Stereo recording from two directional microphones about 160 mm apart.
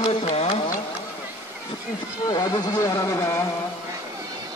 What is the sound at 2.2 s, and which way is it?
Speech, 25° left (ahead or behind).